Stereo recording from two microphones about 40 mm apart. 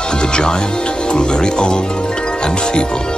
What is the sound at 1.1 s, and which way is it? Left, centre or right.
Speech, left.